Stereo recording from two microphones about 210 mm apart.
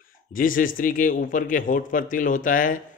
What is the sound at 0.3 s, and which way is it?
Speech, 40° left (ahead or behind).